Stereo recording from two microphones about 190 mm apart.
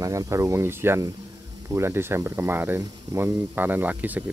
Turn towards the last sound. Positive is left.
turn(degrees=-10)  # may be behind; listen again after turning